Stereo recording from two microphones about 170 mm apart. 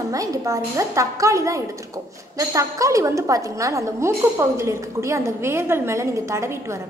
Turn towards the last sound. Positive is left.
turn(degrees=-15)  # may be behind; listen again after turning